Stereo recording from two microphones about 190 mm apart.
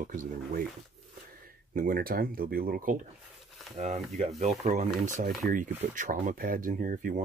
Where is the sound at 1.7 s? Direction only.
50° right (ahead or behind).